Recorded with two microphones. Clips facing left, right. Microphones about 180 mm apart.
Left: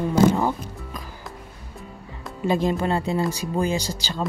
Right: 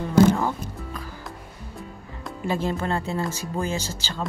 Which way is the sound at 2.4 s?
15° left (ahead or behind).